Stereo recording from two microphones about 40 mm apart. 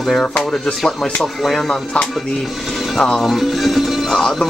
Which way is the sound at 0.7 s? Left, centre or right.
Left.